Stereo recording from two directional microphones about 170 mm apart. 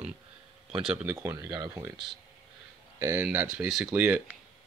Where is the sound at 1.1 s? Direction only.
15° right (ahead or behind).